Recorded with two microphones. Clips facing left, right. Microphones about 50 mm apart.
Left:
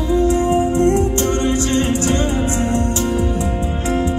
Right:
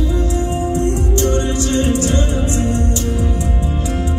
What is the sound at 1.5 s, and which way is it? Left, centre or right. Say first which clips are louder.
Music: even; left.